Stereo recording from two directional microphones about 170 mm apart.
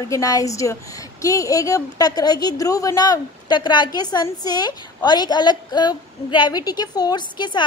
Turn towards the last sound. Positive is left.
turn(degrees=25)  # may be behind; listen again after turning